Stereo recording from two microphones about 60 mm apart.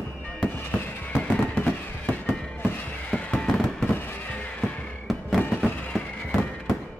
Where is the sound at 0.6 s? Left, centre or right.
Left.